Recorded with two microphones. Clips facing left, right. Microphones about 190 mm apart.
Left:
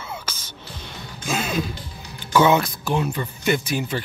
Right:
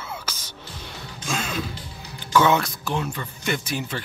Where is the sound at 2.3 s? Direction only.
15° left (ahead or behind).